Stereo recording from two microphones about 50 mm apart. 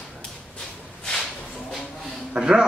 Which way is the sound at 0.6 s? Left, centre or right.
Centre.